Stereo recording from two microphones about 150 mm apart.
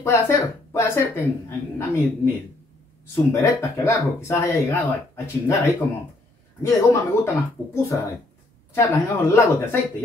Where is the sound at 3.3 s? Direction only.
20° left (ahead or behind).